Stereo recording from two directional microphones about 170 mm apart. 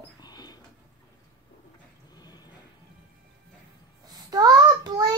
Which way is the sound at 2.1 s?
25° left (ahead or behind).